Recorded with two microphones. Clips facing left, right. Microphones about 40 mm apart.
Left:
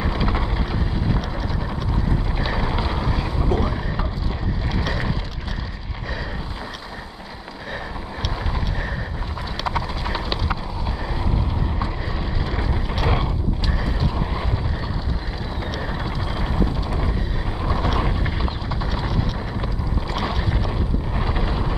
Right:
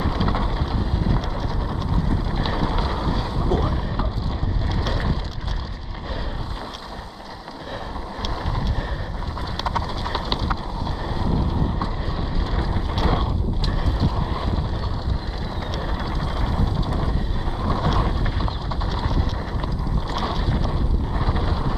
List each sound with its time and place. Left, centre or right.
0.0 s boat: left
2.0 s boat: left
9.7 s clip-clop: left
12.5 s vehicle: left
13.8 s vehicle: left
14.1 s boat: left
16.2 s vehicle: left
17.6 s boat: left
18.9 s vehicle: left
20.2 s rowboat: left
21.2 s vehicle: left